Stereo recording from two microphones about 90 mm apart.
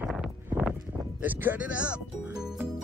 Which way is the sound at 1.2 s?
20° right (ahead or behind).